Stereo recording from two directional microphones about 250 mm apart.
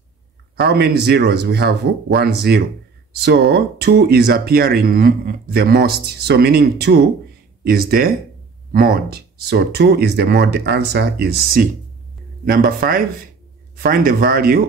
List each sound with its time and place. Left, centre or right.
0.6 s speech: right